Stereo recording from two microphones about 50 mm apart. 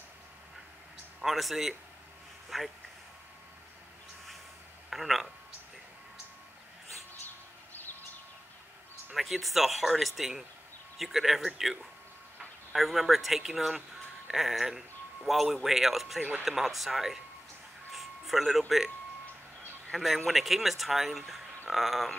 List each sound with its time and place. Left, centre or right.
1.2 s speech: centre
4.8 s speech: centre
7.2 s vehicle: left
9.1 s speech: centre
17.9 s music: centre
19.9 s speech: centre
21.6 s a sound: centre